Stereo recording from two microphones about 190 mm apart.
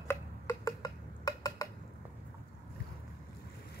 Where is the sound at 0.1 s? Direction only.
15° left (ahead or behind).